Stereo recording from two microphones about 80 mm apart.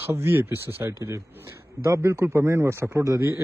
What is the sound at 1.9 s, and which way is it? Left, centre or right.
Speech, right.